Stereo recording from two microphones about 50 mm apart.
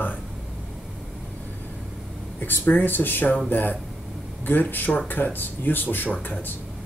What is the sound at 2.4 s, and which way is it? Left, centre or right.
Speech, left.